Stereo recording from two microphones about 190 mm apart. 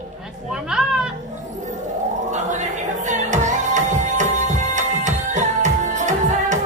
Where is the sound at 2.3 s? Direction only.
40° right (ahead or behind).